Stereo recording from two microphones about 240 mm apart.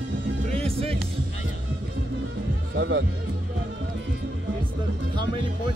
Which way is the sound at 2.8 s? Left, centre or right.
Right.